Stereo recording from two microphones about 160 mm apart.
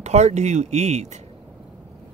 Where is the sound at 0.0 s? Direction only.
45° right (ahead or behind).